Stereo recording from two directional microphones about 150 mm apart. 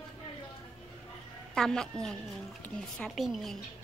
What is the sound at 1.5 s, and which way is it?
A woman's voice, 5° left (ahead or behind).